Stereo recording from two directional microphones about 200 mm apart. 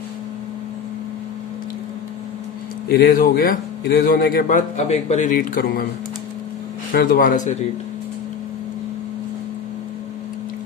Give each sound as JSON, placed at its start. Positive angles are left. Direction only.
{"t": 2.9, "sound": "a man's voice", "side_deg": 45}
{"t": 6.9, "sound": "a man's voice", "side_deg": 45}